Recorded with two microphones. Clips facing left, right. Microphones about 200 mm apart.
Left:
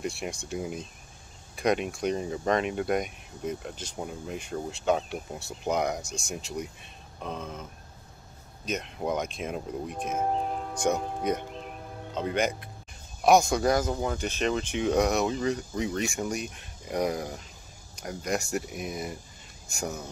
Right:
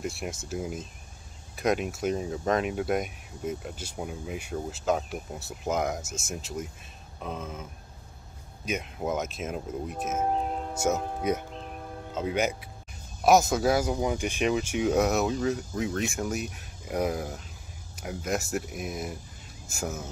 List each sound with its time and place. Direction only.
0.0 s speech: centre (ahead or behind)
8.6 s speech: 5° right (ahead or behind)